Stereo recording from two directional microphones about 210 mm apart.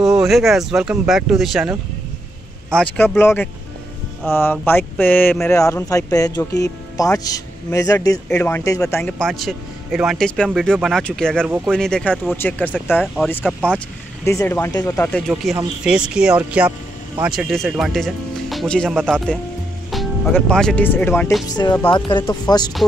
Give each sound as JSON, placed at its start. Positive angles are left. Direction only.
{"t": 0.2, "sound": "a man's voice", "side_deg": 0}
{"t": 15.2, "sound": "a man's voice", "side_deg": 0}
{"t": 21.5, "sound": "speech", "side_deg": 20}